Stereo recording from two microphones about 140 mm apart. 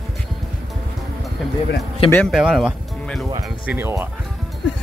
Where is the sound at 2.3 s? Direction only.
Centre (ahead or behind).